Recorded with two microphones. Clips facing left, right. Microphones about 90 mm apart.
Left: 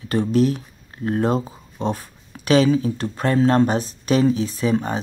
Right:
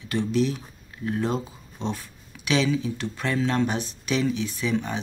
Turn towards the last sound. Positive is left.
turn(degrees=40)  # may be behind; listen again after turning